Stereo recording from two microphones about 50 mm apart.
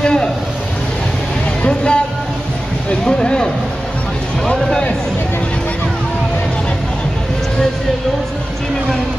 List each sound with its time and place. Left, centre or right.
0.0 s a sound: centre
1.6 s speech: centre
3.1 s speech: centre